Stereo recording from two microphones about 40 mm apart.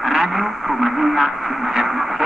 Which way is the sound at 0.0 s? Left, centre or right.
Centre.